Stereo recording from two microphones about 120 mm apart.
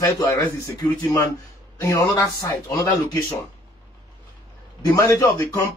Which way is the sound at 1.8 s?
20° left (ahead or behind).